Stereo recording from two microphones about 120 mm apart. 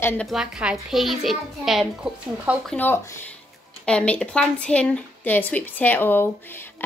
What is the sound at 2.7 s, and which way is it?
A woman's voice, 15° left (ahead or behind).